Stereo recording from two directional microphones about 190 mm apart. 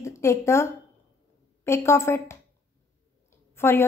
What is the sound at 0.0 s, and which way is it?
A woman's voice, 15° left (ahead or behind).